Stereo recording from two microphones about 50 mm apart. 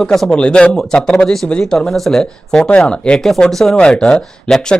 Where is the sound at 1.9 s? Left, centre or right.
Centre.